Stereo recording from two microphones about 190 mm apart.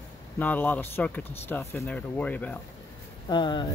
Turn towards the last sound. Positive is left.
turn(degrees=25)  # may be behind; listen again after turning